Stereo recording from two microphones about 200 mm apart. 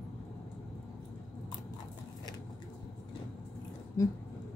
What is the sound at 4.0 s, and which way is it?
Speech, 15° left (ahead or behind).